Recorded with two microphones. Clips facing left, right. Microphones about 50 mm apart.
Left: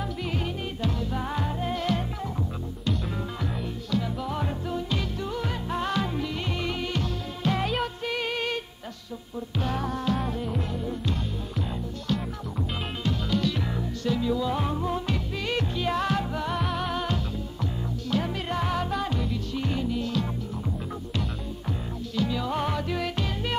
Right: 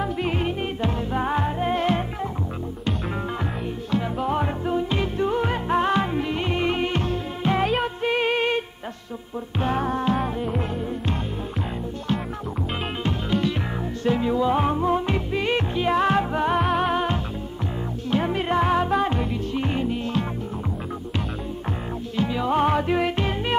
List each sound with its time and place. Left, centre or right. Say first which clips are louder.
0.0 s music: right 6 dB; right
3.9 s music: right 5 dB; right
13.0 s music: right 2 dB; right
22.1 s music: right 5 dB; right